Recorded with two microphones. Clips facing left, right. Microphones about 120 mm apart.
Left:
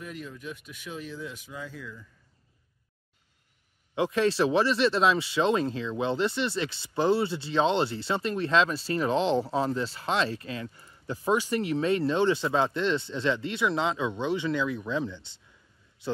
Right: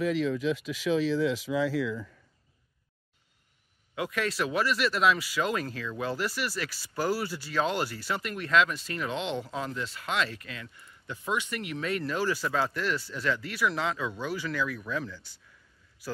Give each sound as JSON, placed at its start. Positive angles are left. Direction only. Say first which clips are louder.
{"t": 0.0, "sound": "speech", "louder": "right 12 dB", "side_deg": -90}
{"t": 3.9, "sound": "a man's voice", "louder": "left 6 dB", "side_deg": 30}